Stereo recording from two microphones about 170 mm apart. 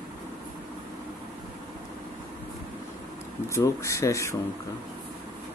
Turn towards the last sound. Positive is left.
turn(degrees=15)  # may be behind; listen again after turning